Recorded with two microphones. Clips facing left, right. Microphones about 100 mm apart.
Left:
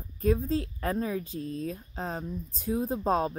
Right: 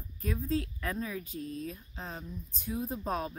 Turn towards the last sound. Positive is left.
turn(degrees=35)  # may be behind; listen again after turning